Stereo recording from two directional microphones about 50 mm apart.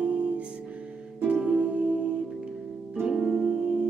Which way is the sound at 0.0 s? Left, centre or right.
Right.